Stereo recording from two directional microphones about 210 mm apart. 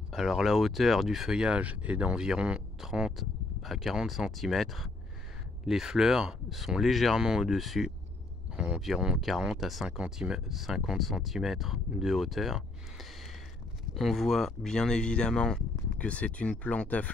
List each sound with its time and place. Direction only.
0.1 s speech: centre (ahead or behind)
13.9 s speech: centre (ahead or behind)